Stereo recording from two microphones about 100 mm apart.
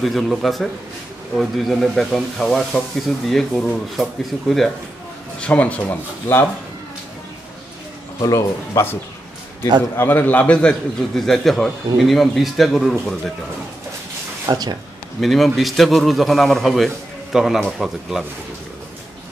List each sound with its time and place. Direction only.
0.0 s a man's voice: centre (ahead or behind)
5.4 s speech: 15° left (ahead or behind)
8.2 s speech: 30° left (ahead or behind)
9.9 s a man's voice: 20° left (ahead or behind); by 13.3 s centre (ahead or behind)
14.5 s speech: 45° right (ahead or behind)
15.1 s a man's voice: centre (ahead or behind)